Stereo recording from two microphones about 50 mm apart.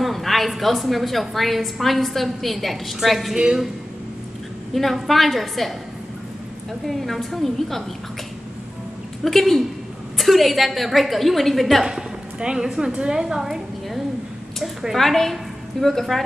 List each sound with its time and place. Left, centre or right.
0.0 s a woman's voice: centre
5.0 s a woman's voice: centre
6.9 s a woman's voice: centre
9.2 s a woman's voice: centre
11.8 s a woman's voice: centre